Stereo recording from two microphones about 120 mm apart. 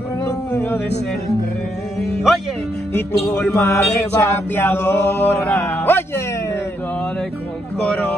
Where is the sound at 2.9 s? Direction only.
20° left (ahead or behind).